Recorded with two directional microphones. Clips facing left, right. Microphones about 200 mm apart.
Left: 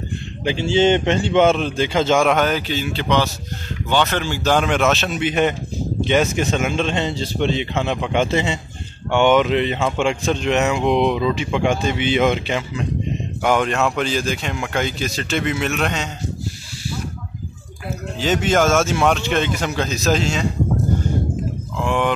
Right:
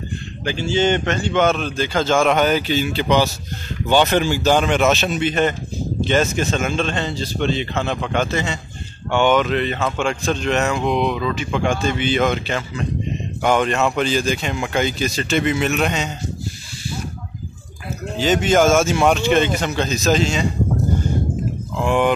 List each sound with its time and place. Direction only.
0.5 s speech: 25° left (ahead or behind)
2.2 s speech: centre (ahead or behind)
5.2 s speech: 10° left (ahead or behind)
10.9 s speech: 20° left (ahead or behind)
13.4 s speech: centre (ahead or behind)
18.1 s speech: centre (ahead or behind)
21.8 s speech: 5° right (ahead or behind)